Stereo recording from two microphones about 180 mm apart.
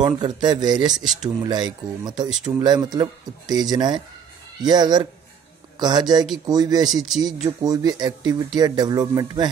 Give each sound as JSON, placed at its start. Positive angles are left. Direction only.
{"t": 0.0, "sound": "speech", "side_deg": -25}
{"t": 0.9, "sound": "speech", "side_deg": -5}
{"t": 1.4, "sound": "speech", "side_deg": -25}
{"t": 6.9, "sound": "speech", "side_deg": 0}
{"t": 7.4, "sound": "speech", "side_deg": -20}